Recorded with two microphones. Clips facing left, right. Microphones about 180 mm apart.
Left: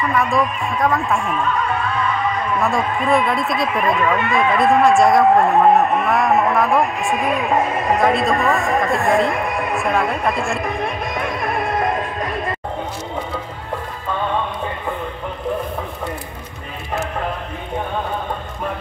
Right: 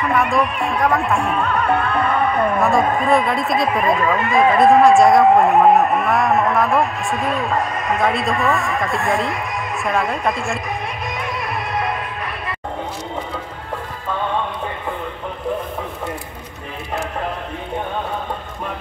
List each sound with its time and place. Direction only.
0.6 s speech: centre (ahead or behind)
1.3 s music: 65° right (ahead or behind)
3.0 s speech: centre (ahead or behind)
7.4 s speech: 20° left (ahead or behind)
8.0 s speech: centre (ahead or behind)
9.3 s a sound: 55° left (ahead or behind)
9.8 s speech: centre (ahead or behind)
10.6 s music: 55° left (ahead or behind)